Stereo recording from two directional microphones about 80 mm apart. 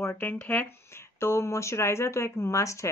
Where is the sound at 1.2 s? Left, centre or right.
Left.